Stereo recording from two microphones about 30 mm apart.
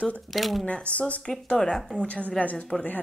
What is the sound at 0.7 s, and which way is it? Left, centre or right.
Speech, left.